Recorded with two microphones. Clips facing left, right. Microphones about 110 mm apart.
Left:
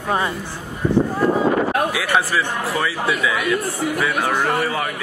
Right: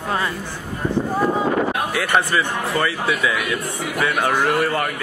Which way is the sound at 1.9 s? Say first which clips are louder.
Even; centre (ahead or behind).